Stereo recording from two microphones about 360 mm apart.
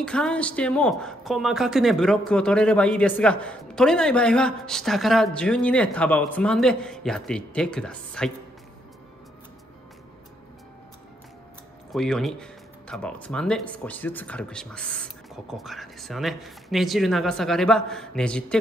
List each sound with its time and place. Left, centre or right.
0.0 s speech: centre
11.9 s speech: centre